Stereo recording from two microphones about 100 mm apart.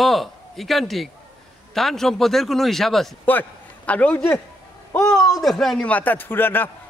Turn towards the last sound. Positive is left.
turn(degrees=20)  # may be behind; listen again after turning